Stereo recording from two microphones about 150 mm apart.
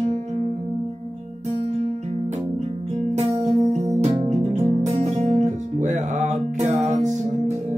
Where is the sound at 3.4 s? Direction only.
45° right (ahead or behind).